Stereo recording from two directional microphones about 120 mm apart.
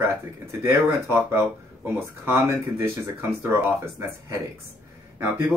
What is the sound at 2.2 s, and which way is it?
Speech, 20° right (ahead or behind).